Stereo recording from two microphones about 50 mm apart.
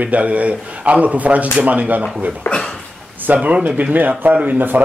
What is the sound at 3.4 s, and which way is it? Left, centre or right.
Speech, right.